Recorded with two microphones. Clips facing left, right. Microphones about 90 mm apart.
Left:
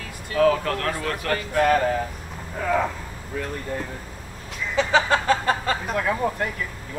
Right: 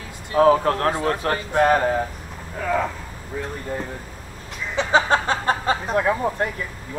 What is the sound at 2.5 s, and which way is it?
Speech, centre (ahead or behind).